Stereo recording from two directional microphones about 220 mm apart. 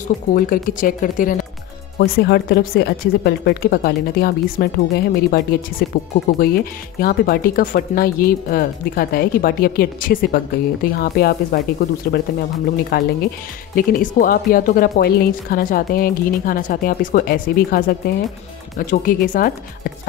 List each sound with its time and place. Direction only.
0.3 s a woman's voice: 40° left (ahead or behind)
2.0 s a woman's voice: 50° left (ahead or behind)